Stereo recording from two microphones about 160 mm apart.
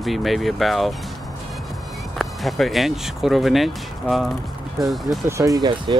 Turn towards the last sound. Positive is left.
turn(degrees=-25)  # may be behind; listen again after turning